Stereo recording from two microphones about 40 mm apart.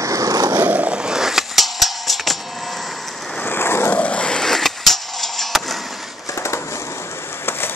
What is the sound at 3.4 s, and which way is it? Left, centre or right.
Vehicle, left.